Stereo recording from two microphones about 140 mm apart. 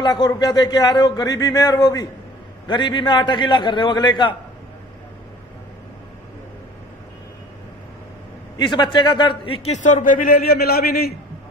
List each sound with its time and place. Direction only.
0.0 s a man's voice: 30° left (ahead or behind)
8.5 s a man's voice: 30° left (ahead or behind)
9.7 s a man's voice: 60° left (ahead or behind); by 11.1 s 90° left